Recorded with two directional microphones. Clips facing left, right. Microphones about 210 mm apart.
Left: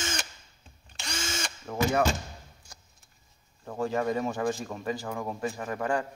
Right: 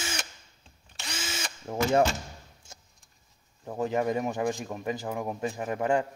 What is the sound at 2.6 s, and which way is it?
Vehicle, 25° right (ahead or behind).